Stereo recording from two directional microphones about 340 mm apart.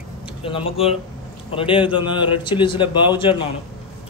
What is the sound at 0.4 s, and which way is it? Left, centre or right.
A man's voice, centre.